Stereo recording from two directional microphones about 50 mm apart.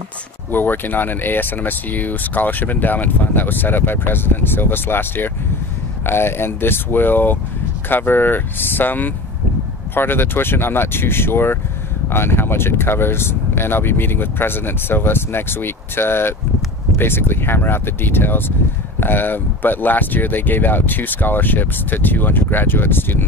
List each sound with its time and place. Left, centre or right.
0.5 s speech: left